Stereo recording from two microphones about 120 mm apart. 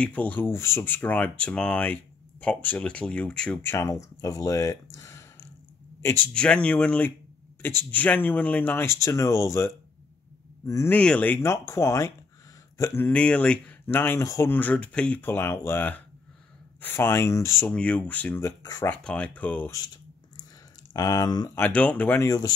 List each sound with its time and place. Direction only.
0.0 s speech: 10° left (ahead or behind)
3.7 s speech: 25° left (ahead or behind)
6.0 s speech: 15° left (ahead or behind)
10.9 s speech: 10° left (ahead or behind)
13.1 s speech: 10° left (ahead or behind)
17.7 s speech: 10° left (ahead or behind)
18.4 s speech: 30° left (ahead or behind)
18.9 s speech: 10° left (ahead or behind)
20.9 s speech: 30° left (ahead or behind)
21.5 s speech: 15° left (ahead or behind)